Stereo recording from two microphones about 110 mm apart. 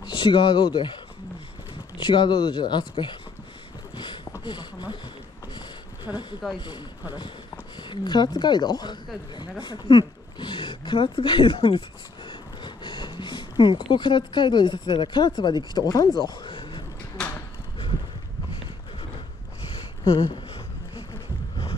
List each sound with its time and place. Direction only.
0.0 s speech: 50° left (ahead or behind)
2.0 s speech: 45° left (ahead or behind)
3.9 s a sound: 45° left (ahead or behind)
4.5 s speech: 45° left (ahead or behind)
6.1 s speech: 5° right (ahead or behind)
6.5 s speech: 45° left (ahead or behind)
20.1 s speech: 50° left (ahead or behind)